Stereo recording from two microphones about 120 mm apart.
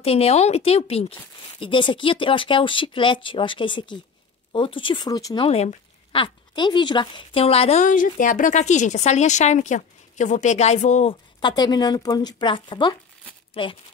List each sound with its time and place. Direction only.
0.0 s a woman's voice: 55° left (ahead or behind)
1.6 s speech: 45° left (ahead or behind)
5.5 s speech: 60° left (ahead or behind)
6.2 s speech: 40° left (ahead or behind)
7.4 s speech: 55° left (ahead or behind); by 11.1 s 75° left (ahead or behind)
11.1 s speech: 35° left (ahead or behind)